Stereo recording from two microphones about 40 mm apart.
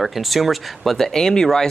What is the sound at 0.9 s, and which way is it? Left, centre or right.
Speech, centre.